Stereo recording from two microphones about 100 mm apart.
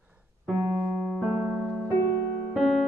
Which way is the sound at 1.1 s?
5° right (ahead or behind).